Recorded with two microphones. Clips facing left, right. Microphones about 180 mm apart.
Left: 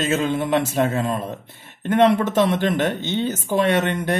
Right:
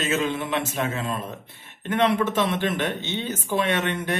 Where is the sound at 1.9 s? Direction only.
40° left (ahead or behind).